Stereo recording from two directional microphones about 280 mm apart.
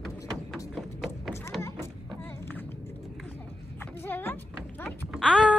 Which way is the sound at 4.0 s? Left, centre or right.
Centre.